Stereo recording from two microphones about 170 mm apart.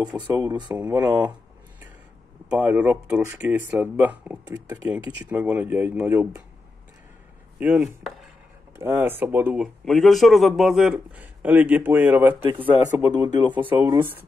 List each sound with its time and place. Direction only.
0.3 s speech: 20° right (ahead or behind)
0.7 s a man's voice: 10° right (ahead or behind)
2.5 s a man's voice: 10° right (ahead or behind)
7.5 s a man's voice: 10° right (ahead or behind)